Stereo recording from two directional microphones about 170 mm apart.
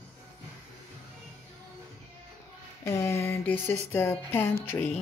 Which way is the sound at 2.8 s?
15° left (ahead or behind).